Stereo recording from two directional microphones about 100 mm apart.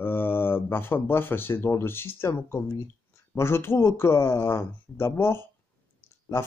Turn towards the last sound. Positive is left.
turn(degrees=25)  # may be behind; listen again after turning